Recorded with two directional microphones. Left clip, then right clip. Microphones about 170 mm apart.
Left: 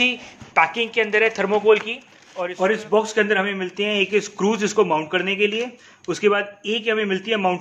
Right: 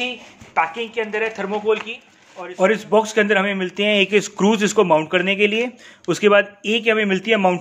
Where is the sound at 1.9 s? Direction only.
35° left (ahead or behind).